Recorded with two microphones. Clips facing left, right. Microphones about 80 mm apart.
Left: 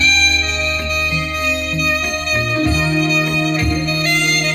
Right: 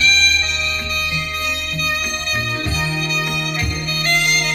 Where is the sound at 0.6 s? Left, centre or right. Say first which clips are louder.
Left 4 dB; left.